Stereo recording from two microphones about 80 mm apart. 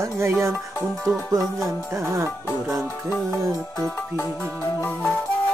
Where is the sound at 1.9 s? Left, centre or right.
Right.